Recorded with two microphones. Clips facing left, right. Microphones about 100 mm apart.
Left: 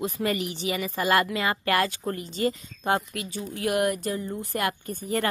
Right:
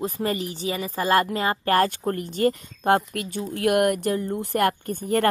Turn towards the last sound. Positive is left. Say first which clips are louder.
# right 5 dB
turn(degrees=-55)  # may be behind; listen again after turning